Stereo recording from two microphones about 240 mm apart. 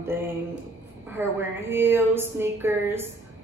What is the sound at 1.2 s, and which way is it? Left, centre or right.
A woman's voice, centre.